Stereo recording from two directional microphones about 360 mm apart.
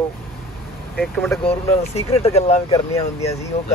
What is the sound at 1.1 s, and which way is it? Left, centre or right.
Speech, centre.